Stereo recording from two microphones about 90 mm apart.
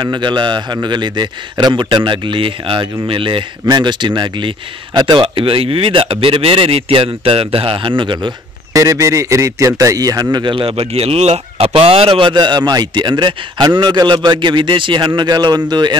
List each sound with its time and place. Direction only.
0.0 s a man's voice: 55° right (ahead or behind); by 3.4 s 70° right (ahead or behind)
3.8 s a man's voice: 60° right (ahead or behind)
5.2 s a man's voice: 90° right
8.0 s a man's voice: 60° right (ahead or behind)
8.7 s a man's voice: 35° right (ahead or behind)
10.3 s a man's voice: 65° right (ahead or behind); by 12.4 s 85° right
12.4 s a man's voice: 50° right (ahead or behind)